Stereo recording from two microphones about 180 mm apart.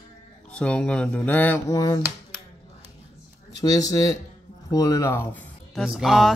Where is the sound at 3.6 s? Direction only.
20° left (ahead or behind).